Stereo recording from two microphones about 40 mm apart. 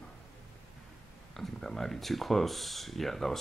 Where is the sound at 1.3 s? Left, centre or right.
Centre.